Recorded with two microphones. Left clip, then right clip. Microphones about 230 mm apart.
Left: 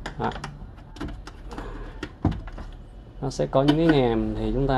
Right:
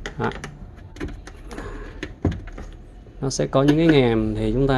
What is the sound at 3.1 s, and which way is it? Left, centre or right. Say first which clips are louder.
Speech: right 2 dB; right.